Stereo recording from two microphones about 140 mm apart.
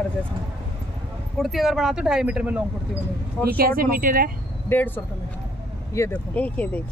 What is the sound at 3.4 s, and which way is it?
Speech, 90° right.